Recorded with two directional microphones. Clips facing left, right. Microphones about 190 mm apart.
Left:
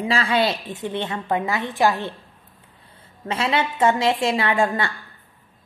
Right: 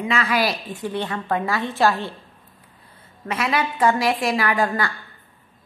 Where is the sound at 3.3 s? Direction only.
25° left (ahead or behind).